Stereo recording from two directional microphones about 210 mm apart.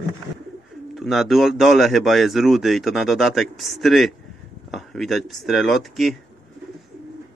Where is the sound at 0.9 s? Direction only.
Centre (ahead or behind).